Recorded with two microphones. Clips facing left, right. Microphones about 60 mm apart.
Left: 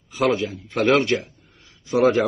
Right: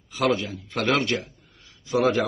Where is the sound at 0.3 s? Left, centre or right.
Left.